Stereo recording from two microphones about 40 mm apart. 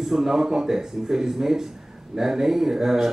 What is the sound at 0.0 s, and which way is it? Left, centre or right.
Speech, centre.